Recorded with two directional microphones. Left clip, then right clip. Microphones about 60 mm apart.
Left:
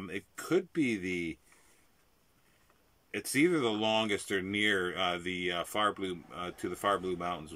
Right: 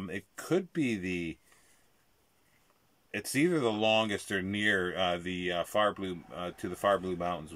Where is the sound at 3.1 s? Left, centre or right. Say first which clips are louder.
Left 1 dB; right.